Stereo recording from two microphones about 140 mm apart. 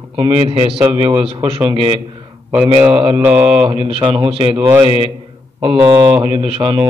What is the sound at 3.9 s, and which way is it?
Speech, 40° right (ahead or behind).